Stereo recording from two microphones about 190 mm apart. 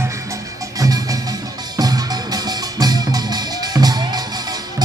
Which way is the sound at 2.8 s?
20° right (ahead or behind).